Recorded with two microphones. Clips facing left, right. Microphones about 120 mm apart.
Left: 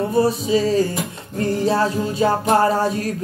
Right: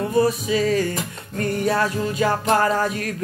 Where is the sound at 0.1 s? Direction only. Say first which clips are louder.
Left 1 dB; 30° left (ahead or behind).